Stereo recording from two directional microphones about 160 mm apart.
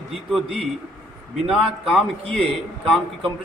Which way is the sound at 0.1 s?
Centre (ahead or behind).